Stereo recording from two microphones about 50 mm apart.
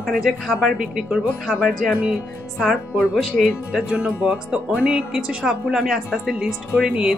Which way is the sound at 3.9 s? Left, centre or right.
Right.